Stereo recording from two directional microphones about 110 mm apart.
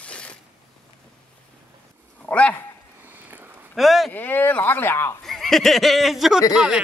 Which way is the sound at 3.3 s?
20° right (ahead or behind).